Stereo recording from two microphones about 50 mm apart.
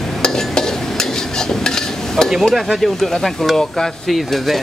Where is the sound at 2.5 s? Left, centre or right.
Centre.